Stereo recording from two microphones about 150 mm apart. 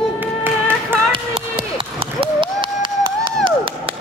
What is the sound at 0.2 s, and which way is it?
Music, 15° right (ahead or behind).